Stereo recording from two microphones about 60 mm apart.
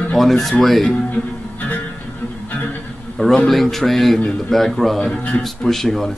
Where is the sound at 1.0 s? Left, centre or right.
Left.